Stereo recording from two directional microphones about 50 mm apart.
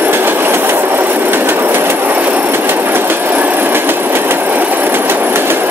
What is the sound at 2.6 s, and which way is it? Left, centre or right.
Train, right.